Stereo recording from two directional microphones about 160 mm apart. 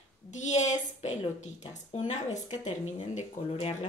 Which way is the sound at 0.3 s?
50° left (ahead or behind).